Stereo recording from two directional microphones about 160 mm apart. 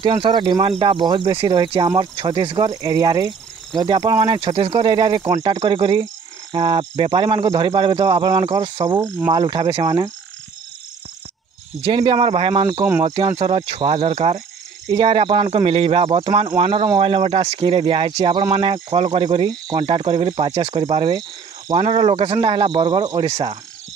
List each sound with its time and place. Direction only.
0.0 s speech: 35° right (ahead or behind)
9.8 s speech: 25° right (ahead or behind)
11.8 s speech: 30° right (ahead or behind)